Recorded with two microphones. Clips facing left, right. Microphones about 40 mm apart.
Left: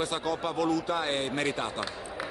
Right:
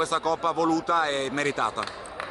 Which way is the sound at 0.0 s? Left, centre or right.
Centre.